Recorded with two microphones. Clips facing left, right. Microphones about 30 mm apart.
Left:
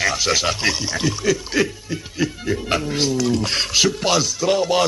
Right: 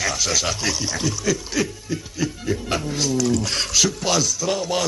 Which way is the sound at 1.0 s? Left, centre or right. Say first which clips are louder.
Left 3 dB; left.